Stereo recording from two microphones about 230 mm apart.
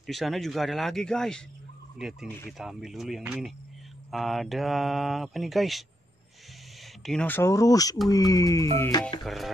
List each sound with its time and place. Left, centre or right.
0.0 s speech: centre
7.1 s speech: centre
9.2 s speech: centre